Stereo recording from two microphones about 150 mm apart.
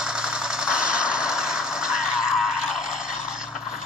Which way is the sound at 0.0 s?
5° right (ahead or behind).